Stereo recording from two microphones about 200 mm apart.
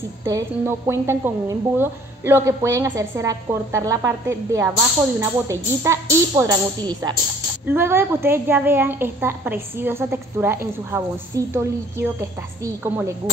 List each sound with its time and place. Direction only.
0.2 s a woman's voice: 15° right (ahead or behind)